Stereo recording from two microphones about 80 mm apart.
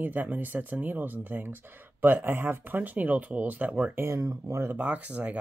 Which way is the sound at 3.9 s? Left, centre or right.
Right.